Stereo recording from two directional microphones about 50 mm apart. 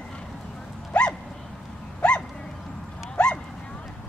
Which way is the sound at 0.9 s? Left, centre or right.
Left.